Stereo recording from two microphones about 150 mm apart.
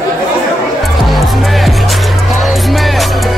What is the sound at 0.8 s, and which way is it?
Music, centre (ahead or behind).